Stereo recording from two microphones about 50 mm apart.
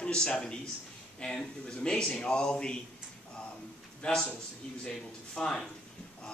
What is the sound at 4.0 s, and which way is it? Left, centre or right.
Speech, centre.